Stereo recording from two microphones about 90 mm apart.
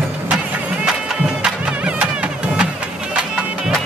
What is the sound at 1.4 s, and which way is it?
Music, 10° right (ahead or behind).